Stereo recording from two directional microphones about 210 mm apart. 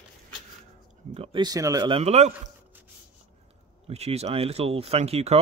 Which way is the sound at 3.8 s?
30° right (ahead or behind).